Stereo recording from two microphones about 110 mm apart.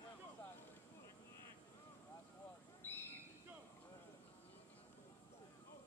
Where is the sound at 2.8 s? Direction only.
20° left (ahead or behind).